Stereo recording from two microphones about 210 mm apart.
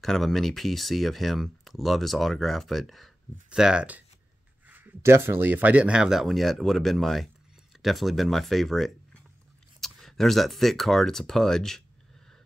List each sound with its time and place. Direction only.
0.0 s speech: centre (ahead or behind)